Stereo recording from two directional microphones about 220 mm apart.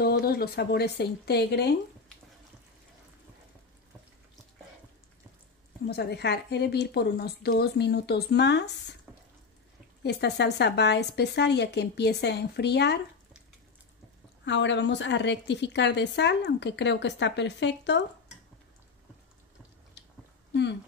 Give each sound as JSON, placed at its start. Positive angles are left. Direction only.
{"t": 0.0, "sound": "a woman's voice", "side_deg": 45}
{"t": 5.9, "sound": "a woman's voice", "side_deg": 50}
{"t": 10.0, "sound": "a woman's voice", "side_deg": 50}
{"t": 14.4, "sound": "a woman's voice", "side_deg": 55}